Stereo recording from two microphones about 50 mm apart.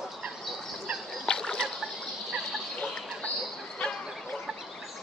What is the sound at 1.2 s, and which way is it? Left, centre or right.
Splash, centre.